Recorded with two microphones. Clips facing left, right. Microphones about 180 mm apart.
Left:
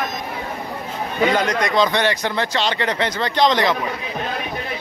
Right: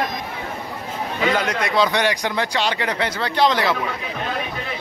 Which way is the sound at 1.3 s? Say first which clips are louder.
Left 2 dB; 10° right (ahead or behind).